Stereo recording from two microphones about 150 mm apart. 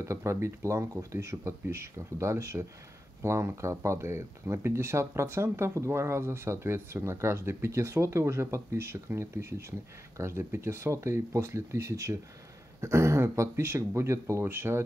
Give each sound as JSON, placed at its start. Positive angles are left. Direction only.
{"t": 0.0, "sound": "speech", "side_deg": -20}